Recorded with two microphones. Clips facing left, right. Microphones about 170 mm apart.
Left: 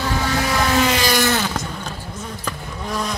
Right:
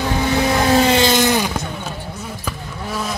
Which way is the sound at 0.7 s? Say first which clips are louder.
Right 4 dB; 25° right (ahead or behind).